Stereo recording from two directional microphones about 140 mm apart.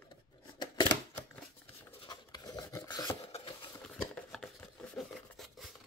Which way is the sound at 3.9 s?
5° left (ahead or behind).